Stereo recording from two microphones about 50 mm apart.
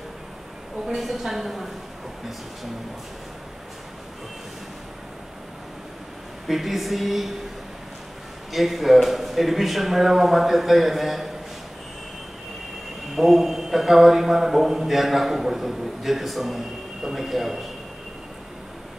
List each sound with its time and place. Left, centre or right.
0.8 s a man's voice: centre
6.4 s a man's voice: centre
8.5 s a man's voice: centre
13.1 s a man's voice: centre